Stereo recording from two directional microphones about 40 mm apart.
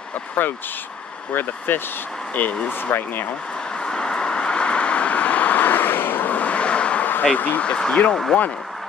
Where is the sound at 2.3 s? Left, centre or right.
Left.